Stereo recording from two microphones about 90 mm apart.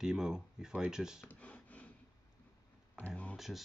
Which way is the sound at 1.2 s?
15° left (ahead or behind).